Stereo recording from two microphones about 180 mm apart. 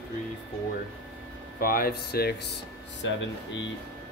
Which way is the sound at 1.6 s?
55° left (ahead or behind).